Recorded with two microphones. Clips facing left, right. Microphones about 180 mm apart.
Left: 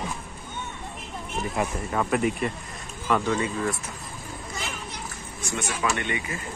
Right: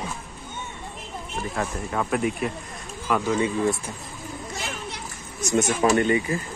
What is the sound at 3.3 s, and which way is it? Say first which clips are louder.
Speech: right 4 dB; 20° right (ahead or behind).